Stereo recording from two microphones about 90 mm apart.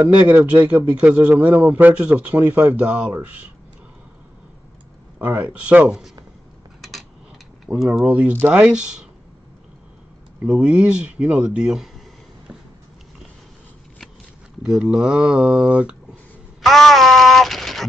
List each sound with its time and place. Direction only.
0.0 s a man's voice: 20° right (ahead or behind)
5.2 s speech: 20° right (ahead or behind)
6.8 s a sound: centre (ahead or behind)
7.7 s a man's voice: 15° right (ahead or behind)
8.6 s speech: 10° right (ahead or behind)
10.4 s speech: 10° right (ahead or behind)
14.6 s speech: 5° right (ahead or behind)
16.6 s a sound: centre (ahead or behind)